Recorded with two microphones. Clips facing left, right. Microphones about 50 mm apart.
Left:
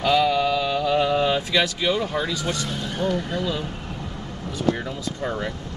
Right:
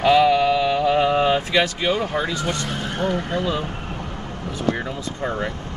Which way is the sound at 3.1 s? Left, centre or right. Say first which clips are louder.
Right 2 dB; right.